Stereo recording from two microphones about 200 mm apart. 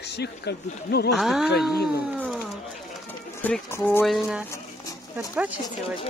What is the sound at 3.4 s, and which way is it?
Speech, 10° left (ahead or behind).